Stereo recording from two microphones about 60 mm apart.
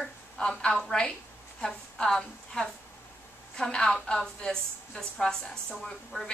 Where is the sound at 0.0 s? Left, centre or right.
Centre.